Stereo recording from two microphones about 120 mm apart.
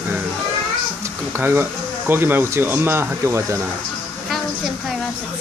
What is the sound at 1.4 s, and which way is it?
Speech, 20° right (ahead or behind).